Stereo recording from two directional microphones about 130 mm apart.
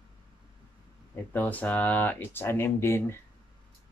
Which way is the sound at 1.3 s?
15° left (ahead or behind).